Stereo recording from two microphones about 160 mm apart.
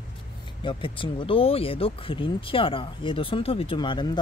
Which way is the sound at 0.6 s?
30° left (ahead or behind).